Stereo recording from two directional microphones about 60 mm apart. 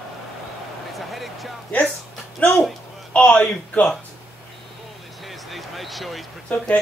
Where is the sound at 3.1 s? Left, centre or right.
Left.